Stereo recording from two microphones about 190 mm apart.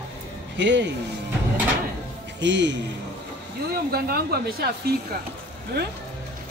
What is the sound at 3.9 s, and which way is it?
Speech, 55° right (ahead or behind).